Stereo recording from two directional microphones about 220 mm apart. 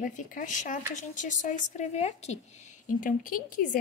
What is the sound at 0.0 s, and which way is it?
A woman's voice, 35° left (ahead or behind).